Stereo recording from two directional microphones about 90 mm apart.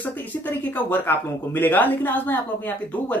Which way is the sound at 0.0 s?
20° left (ahead or behind).